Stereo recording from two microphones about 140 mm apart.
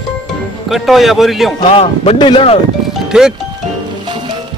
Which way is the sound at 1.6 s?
45° left (ahead or behind).